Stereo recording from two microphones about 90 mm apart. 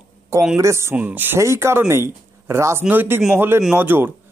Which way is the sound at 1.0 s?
20° right (ahead or behind).